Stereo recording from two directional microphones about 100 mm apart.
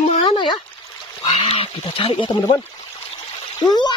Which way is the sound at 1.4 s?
75° left (ahead or behind).